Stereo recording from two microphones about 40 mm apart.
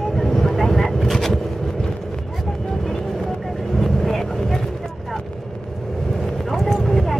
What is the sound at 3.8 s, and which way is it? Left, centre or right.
Vehicle, centre.